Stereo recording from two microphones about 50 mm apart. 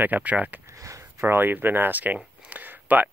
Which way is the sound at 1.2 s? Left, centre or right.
Right.